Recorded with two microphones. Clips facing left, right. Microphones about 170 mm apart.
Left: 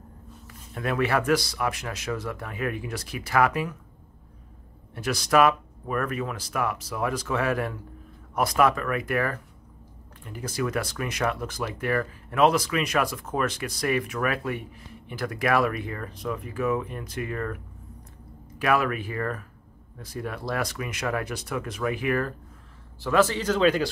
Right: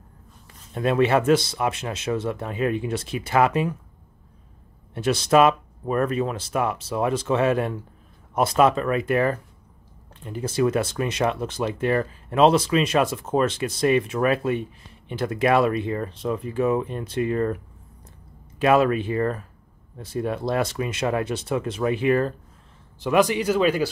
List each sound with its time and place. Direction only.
0.5 s speech: 25° right (ahead or behind)
4.9 s speech: 25° right (ahead or behind)
18.6 s speech: 25° right (ahead or behind); by 23.9 s 10° right (ahead or behind)